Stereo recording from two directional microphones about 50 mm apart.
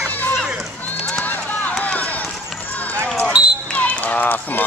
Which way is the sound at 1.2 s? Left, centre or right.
Left.